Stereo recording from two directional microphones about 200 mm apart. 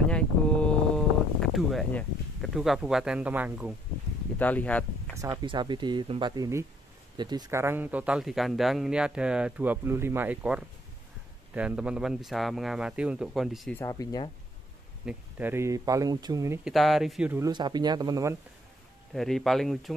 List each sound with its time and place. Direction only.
0.1 s a sound: 5° left (ahead or behind)
4.4 s speech: 10° left (ahead or behind)
5.1 s speech: 20° right (ahead or behind); by 13.7 s centre (ahead or behind)
13.7 s speech: 15° left (ahead or behind)
15.0 s speech: 10° right (ahead or behind)
16.6 s speech: centre (ahead or behind)
17.4 s speech: 20° right (ahead or behind)
19.1 s speech: centre (ahead or behind)